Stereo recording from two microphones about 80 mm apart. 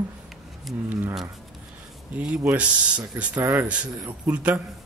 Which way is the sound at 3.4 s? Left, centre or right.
Right.